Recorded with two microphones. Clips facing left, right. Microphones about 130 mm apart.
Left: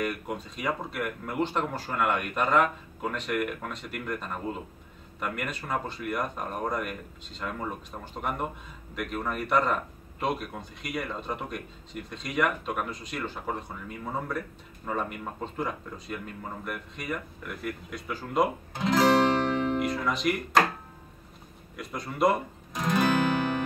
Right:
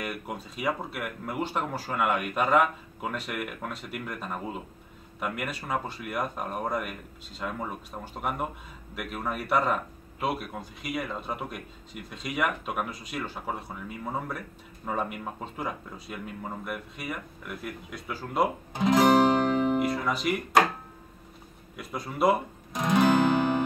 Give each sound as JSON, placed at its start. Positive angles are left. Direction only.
{"t": 0.0, "sound": "a man's voice", "side_deg": -5}
{"t": 18.7, "sound": "music", "side_deg": -15}
{"t": 19.8, "sound": "speech", "side_deg": -5}
{"t": 21.7, "sound": "speech", "side_deg": -5}